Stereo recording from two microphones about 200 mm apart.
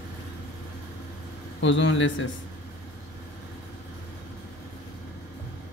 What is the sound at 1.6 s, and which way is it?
Speech, 65° left (ahead or behind).